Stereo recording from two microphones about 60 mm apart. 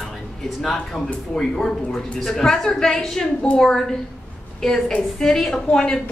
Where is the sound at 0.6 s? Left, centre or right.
Centre.